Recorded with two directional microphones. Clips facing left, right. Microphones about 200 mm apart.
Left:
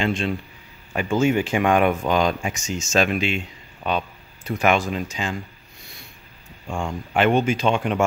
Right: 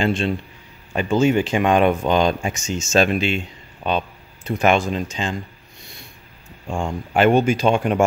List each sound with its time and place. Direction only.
0.0 s speech: 30° right (ahead or behind)
0.9 s speech: 20° right (ahead or behind)
6.7 s speech: 25° right (ahead or behind)
7.2 s speech: 40° right (ahead or behind)